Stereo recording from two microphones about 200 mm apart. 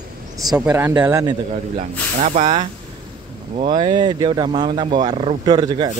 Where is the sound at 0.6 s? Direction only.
10° right (ahead or behind).